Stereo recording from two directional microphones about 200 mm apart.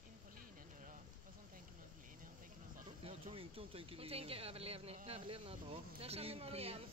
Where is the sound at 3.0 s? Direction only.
30° right (ahead or behind).